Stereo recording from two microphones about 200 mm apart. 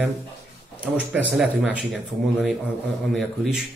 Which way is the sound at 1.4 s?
Centre (ahead or behind).